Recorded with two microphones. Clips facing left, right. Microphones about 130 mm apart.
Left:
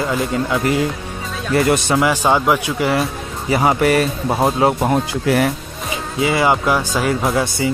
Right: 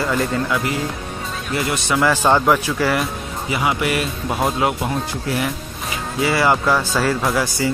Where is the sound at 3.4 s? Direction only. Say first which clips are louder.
Left 6 dB; 40° left (ahead or behind).